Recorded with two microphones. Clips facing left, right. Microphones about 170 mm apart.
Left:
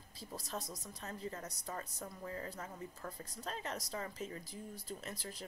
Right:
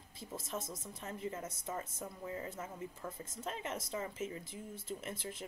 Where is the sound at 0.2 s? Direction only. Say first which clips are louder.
Right 2 dB; 25° right (ahead or behind).